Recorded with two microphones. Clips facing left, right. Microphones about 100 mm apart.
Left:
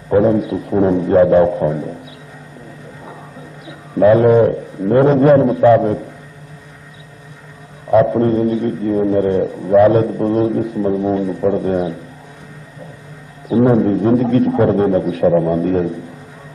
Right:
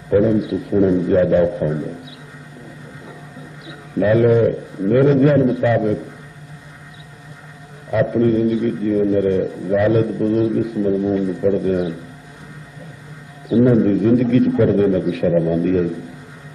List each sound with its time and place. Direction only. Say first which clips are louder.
0.1 s a man's voice: left 2 dB; 35° left (ahead or behind)
3.6 s a man's voice: left 6 dB; 35° left (ahead or behind)
7.9 s a man's voice: left 4 dB; 40° left (ahead or behind)
13.5 s a man's voice: left 1 dB; 40° left (ahead or behind)